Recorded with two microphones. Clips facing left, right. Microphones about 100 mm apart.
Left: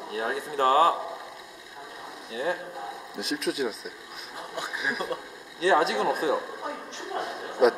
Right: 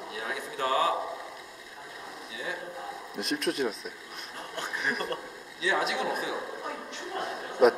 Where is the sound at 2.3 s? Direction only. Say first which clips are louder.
Left 9 dB; 40° left (ahead or behind).